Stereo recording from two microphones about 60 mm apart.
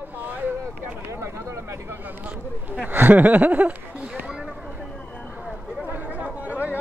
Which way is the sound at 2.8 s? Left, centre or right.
Right.